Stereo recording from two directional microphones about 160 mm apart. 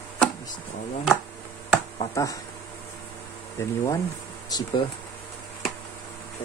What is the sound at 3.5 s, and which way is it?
Speech, 15° left (ahead or behind).